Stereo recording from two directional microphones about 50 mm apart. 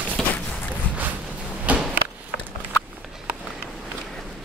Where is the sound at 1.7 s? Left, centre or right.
Right.